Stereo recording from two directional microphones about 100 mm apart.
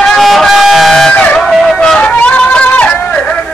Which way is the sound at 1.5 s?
Centre (ahead or behind).